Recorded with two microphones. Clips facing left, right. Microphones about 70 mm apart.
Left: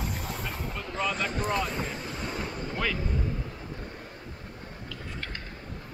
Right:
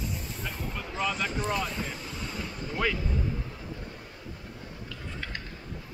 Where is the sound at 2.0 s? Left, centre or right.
Left.